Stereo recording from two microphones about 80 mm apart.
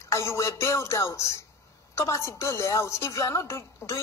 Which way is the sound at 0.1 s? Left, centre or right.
Left.